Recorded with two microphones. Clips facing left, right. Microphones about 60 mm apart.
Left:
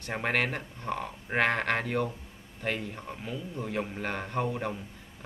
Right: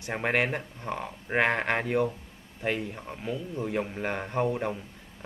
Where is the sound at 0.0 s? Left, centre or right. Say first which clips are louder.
Right 2 dB; centre.